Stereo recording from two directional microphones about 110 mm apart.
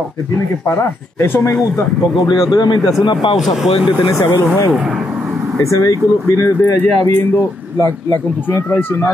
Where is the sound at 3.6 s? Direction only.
55° left (ahead or behind).